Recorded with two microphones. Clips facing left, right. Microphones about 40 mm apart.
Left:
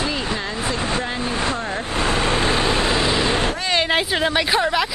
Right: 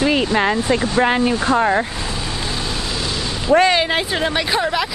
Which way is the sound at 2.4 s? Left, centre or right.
Left.